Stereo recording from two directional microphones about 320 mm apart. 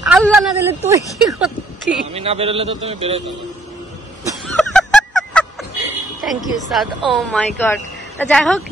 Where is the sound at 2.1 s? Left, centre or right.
Centre.